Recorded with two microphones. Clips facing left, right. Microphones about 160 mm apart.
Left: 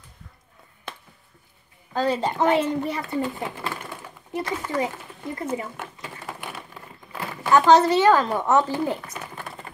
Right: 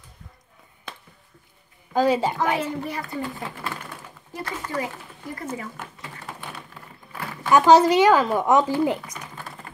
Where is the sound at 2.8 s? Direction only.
25° left (ahead or behind).